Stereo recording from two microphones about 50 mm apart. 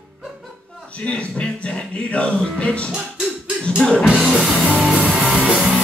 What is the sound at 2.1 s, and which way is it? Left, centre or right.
Music, left.